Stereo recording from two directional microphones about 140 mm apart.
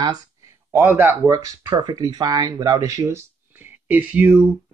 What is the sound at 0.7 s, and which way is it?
Speech, 20° right (ahead or behind).